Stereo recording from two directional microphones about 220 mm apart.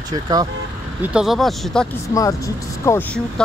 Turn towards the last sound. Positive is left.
turn(degrees=10)  # may be behind; listen again after turning